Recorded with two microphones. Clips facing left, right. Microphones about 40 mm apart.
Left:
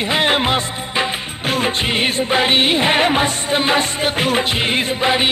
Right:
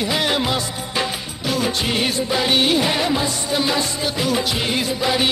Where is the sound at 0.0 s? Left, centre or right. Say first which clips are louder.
Left 4 dB; left.